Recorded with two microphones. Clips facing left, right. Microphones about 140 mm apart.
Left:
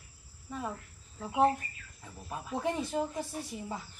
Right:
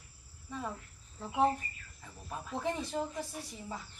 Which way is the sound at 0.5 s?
10° left (ahead or behind).